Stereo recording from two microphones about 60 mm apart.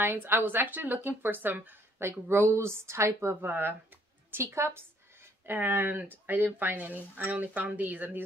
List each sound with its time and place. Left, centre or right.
0.0 s speech: right
2.0 s a woman's voice: right
5.5 s speech: right